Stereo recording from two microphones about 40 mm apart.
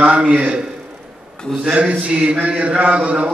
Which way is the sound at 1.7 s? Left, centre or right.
Right.